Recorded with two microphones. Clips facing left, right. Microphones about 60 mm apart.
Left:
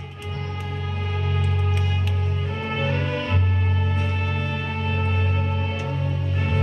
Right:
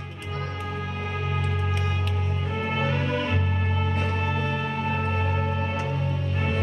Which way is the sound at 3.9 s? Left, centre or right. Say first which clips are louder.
Right 1 dB; right.